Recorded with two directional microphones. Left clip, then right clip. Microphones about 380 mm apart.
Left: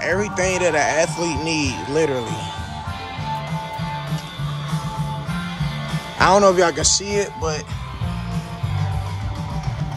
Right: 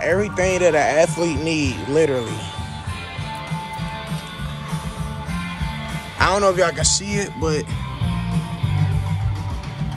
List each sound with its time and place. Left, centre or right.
0.0 s speech: centre
6.1 s speech: centre